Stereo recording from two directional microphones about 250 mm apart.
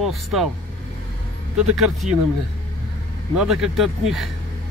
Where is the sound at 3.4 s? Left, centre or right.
Centre.